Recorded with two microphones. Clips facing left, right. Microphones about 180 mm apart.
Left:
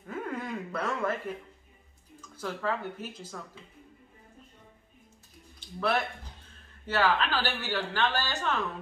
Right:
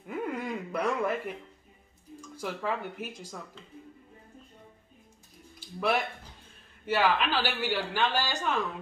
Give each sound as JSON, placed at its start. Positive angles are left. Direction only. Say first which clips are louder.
{"t": 0.0, "sound": "dog", "louder": "right 2 dB", "side_deg": -15}
{"t": 2.3, "sound": "a man's voice", "louder": "even", "side_deg": -15}
{"t": 5.6, "sound": "a man's voice", "louder": "right 1 dB", "side_deg": -10}